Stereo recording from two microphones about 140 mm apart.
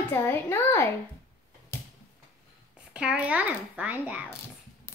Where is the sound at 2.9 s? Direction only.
5° right (ahead or behind).